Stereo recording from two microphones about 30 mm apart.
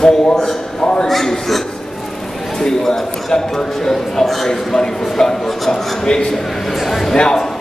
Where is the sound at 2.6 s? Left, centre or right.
Centre.